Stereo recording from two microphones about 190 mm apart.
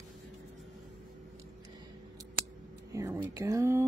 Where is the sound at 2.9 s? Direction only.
15° right (ahead or behind).